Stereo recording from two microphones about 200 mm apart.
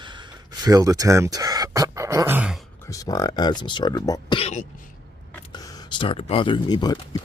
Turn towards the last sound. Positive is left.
turn(degrees=20)  # may be behind; listen again after turning